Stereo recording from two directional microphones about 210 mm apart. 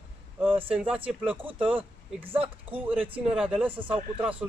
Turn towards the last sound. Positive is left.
turn(degrees=-5)  # may be behind; listen again after turning